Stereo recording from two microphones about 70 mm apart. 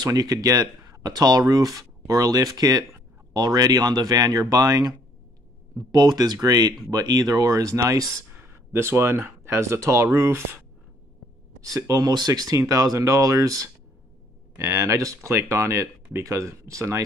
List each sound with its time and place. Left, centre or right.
0.0 s speech: right
5.8 s speech: right
8.4 s speech: right
11.6 s speech: right
12.5 s speech: right
14.6 s speech: right